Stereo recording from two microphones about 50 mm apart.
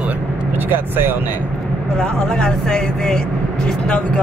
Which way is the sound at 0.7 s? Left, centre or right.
Right.